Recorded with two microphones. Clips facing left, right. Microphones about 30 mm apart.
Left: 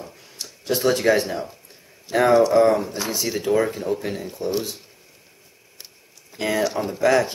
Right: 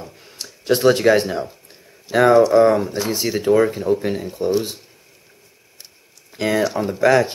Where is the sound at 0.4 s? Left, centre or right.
Right.